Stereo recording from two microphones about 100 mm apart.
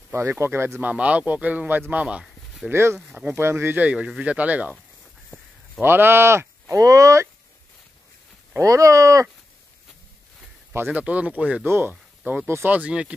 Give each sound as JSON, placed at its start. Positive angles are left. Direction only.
{"t": 0.1, "sound": "speech", "side_deg": -25}
{"t": 2.7, "sound": "speech", "side_deg": -25}
{"t": 3.1, "sound": "speech", "side_deg": -15}
{"t": 5.8, "sound": "speech", "side_deg": -20}
{"t": 8.5, "sound": "speech", "side_deg": -35}
{"t": 10.7, "sound": "speech", "side_deg": -20}